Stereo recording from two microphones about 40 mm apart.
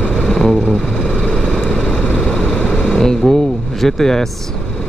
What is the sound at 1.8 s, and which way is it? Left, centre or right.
Vehicle, left.